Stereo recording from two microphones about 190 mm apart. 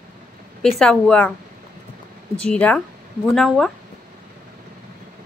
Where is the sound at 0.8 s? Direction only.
5° left (ahead or behind).